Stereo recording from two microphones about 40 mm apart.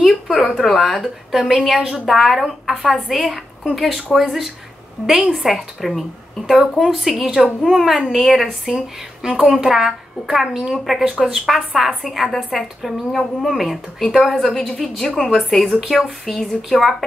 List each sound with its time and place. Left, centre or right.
0.0 s a sound: centre
0.6 s a woman's voice: centre
9.2 s a woman's voice: centre